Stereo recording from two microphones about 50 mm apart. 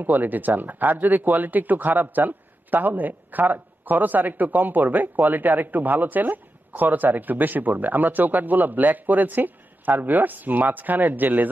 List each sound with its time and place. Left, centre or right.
0.0 s speech: right